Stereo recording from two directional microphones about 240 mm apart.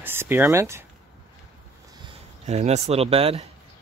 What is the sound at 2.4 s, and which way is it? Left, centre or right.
Speech, right.